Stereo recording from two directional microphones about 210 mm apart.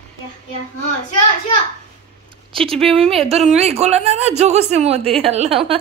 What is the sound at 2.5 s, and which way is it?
Speech, 25° right (ahead or behind).